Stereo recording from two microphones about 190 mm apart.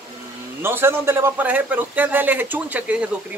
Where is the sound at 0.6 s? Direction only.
10° right (ahead or behind).